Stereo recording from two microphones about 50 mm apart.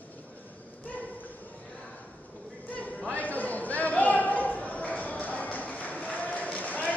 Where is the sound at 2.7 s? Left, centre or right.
Left.